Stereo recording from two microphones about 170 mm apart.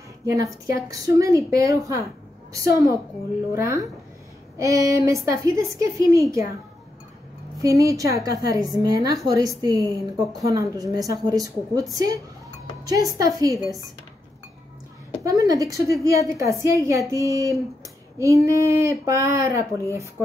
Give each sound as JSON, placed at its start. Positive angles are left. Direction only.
{"t": 0.2, "sound": "a woman's voice", "side_deg": -20}
{"t": 7.6, "sound": "a woman's voice", "side_deg": -20}
{"t": 15.2, "sound": "a woman's voice", "side_deg": -20}